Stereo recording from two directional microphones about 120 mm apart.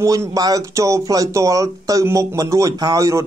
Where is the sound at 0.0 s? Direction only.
30° right (ahead or behind).